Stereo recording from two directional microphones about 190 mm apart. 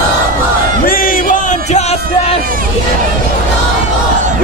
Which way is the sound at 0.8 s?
45° left (ahead or behind).